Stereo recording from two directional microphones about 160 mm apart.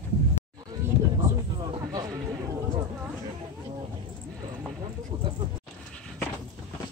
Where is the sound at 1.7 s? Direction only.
25° right (ahead or behind).